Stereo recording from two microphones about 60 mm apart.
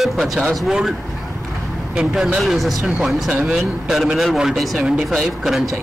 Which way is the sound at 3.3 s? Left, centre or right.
Centre.